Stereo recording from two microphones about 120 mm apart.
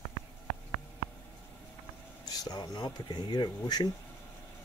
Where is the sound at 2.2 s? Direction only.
35° left (ahead or behind).